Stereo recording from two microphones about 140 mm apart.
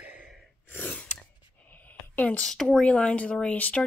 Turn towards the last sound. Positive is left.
turn(degrees=10)  # may be behind; listen again after turning